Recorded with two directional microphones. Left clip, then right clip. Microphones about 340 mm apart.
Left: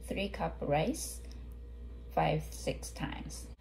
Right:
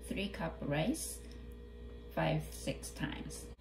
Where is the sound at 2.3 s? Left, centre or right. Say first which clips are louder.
Left 4 dB; centre.